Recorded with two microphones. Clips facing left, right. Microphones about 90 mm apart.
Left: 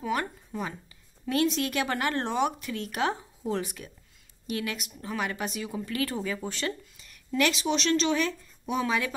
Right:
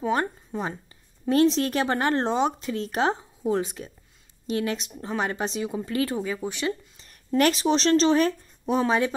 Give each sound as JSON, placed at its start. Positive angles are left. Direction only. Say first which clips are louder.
{"t": 0.0, "sound": "speech", "louder": "right 5 dB", "side_deg": -30}
{"t": 7.0, "sound": "speech", "louder": "right 5 dB", "side_deg": -40}